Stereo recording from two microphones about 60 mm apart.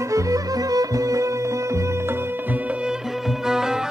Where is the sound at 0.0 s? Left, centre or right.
Right.